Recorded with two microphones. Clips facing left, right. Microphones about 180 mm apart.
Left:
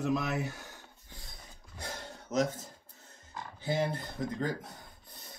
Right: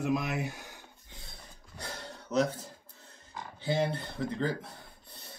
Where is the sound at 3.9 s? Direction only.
30° right (ahead or behind).